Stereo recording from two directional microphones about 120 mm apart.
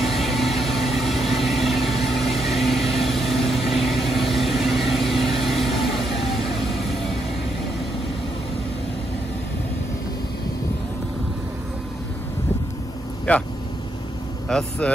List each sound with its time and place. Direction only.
0.0 s vehicle: centre (ahead or behind)
13.3 s speech: 10° left (ahead or behind)
14.5 s speech: 5° left (ahead or behind)